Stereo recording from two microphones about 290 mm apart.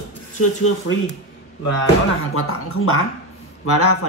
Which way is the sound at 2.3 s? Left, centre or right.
Left.